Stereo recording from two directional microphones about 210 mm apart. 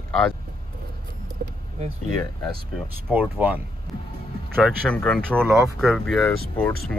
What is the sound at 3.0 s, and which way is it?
Speech, 10° right (ahead or behind).